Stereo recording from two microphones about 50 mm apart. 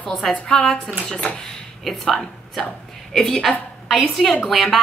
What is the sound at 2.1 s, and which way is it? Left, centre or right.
A woman's voice, centre.